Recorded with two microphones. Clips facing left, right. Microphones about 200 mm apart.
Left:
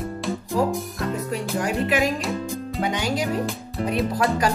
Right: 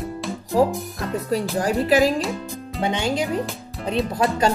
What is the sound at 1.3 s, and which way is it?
Speech, 35° right (ahead or behind).